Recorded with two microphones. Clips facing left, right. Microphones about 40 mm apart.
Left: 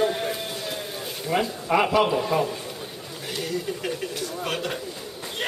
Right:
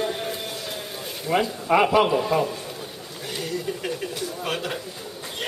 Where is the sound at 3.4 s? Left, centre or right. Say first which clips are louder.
Even; centre.